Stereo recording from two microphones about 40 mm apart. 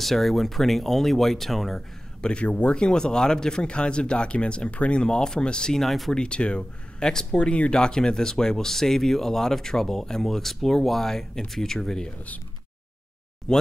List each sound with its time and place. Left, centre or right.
0.0 s speech: centre
1.8 s speech: left
2.4 s speech: left
2.7 s speech: left
5.0 s speech: centre
5.8 s speech: centre
6.1 s speech: left
13.5 s speech: centre